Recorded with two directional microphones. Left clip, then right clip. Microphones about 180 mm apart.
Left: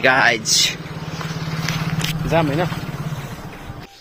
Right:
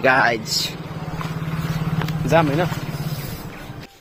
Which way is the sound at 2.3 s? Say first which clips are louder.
Right 2 dB; 30° right (ahead or behind).